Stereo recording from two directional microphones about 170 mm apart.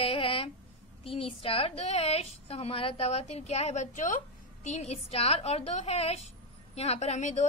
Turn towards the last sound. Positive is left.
turn(degrees=40)  # may be behind; listen again after turning